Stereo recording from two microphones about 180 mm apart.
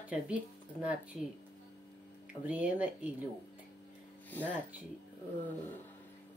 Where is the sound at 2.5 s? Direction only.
10° right (ahead or behind).